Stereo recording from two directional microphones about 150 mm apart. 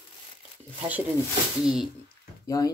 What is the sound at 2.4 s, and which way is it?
Speech, 20° left (ahead or behind).